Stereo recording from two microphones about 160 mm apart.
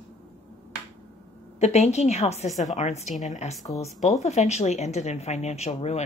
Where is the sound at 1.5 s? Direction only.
45° left (ahead or behind).